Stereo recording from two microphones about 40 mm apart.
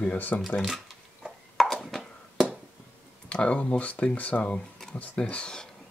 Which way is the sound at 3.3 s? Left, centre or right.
Left.